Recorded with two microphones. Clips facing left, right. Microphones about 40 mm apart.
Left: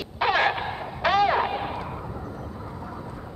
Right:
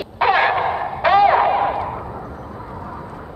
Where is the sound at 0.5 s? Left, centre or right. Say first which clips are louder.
Right 11 dB; right.